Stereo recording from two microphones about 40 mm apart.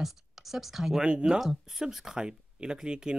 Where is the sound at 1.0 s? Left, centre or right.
Right.